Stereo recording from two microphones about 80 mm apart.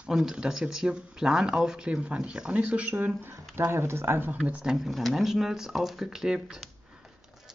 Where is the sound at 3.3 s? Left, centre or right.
Right.